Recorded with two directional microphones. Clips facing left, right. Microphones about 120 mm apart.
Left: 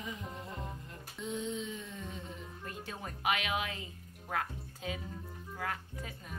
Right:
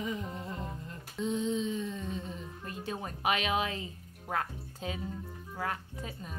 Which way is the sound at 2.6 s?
25° right (ahead or behind).